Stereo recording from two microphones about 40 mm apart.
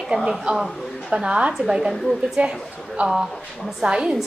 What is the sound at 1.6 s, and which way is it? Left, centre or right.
A woman's voice, centre.